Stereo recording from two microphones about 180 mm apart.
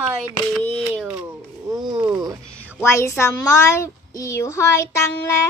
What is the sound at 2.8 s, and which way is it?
A child's voice, 15° left (ahead or behind).